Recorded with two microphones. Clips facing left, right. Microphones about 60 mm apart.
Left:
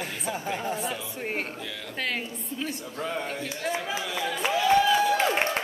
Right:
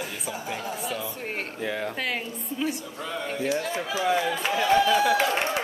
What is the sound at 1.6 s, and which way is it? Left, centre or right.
Speech, right.